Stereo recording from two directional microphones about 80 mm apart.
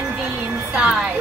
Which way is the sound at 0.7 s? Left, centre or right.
Centre.